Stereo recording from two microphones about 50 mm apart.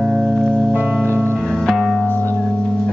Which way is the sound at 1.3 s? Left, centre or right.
Centre.